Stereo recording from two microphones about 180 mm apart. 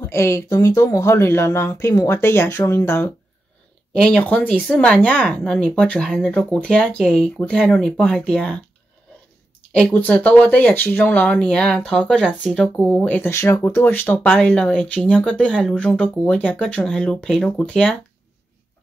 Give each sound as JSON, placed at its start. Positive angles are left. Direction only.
{"t": 0.0, "sound": "speech", "side_deg": 15}
{"t": 9.7, "sound": "speech", "side_deg": 5}